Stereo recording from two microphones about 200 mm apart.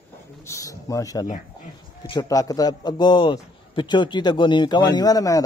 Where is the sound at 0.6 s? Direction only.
15° left (ahead or behind).